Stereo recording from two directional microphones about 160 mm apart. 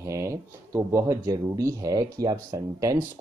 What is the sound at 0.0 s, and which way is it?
Speech, 20° right (ahead or behind).